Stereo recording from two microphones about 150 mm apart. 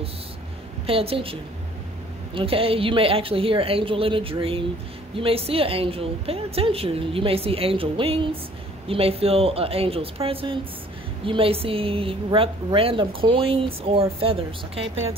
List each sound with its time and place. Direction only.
0.8 s a woman's voice: 40° right (ahead or behind)